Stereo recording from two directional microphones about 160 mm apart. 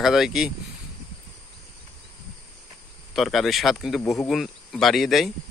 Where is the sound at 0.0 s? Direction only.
Centre (ahead or behind).